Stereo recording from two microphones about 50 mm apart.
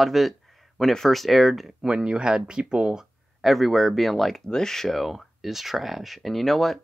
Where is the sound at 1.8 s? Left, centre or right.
Centre.